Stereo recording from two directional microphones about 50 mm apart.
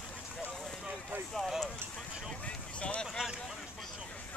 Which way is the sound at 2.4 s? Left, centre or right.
Left.